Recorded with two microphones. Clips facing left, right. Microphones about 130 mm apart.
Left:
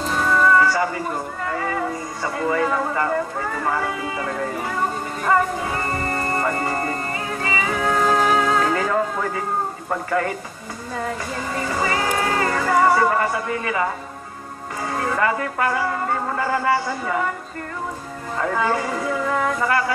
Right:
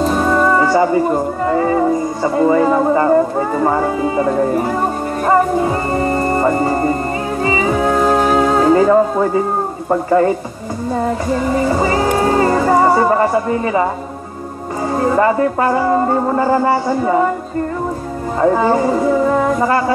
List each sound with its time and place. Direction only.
0.0 s speech: 35° right (ahead or behind)
7.4 s music: 25° right (ahead or behind)
9.8 s speech: 30° right (ahead or behind)
11.0 s music: 30° right (ahead or behind)
15.0 s speech: 30° right (ahead or behind)
18.4 s speech: 30° right (ahead or behind)